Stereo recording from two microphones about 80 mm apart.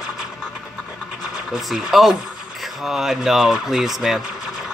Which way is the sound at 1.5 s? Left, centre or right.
Centre.